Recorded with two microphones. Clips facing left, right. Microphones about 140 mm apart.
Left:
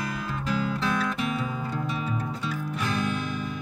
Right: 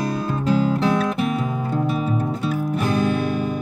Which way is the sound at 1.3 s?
50° right (ahead or behind).